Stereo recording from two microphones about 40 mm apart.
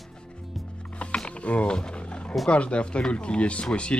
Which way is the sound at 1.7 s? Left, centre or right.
Left.